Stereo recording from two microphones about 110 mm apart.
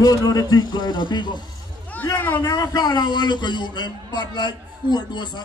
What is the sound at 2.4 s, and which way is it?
A man's voice, 40° left (ahead or behind).